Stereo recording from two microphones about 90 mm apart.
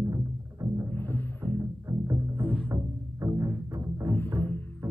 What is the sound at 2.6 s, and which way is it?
Music, 55° right (ahead or behind).